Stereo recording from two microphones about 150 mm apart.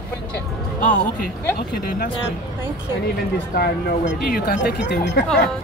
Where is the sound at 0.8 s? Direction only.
65° left (ahead or behind).